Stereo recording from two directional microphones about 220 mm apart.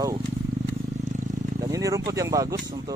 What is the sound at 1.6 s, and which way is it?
Speech, 15° right (ahead or behind).